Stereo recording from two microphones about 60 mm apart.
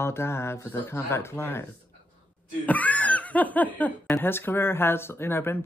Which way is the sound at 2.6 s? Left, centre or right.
Left.